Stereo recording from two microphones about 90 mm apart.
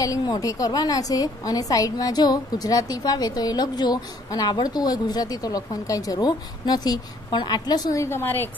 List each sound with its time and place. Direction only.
0.0 s a woman's voice: 40° left (ahead or behind)
8.0 s a woman's voice: 25° left (ahead or behind)